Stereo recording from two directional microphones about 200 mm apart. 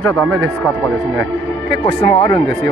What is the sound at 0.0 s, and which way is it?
Speech, 5° left (ahead or behind).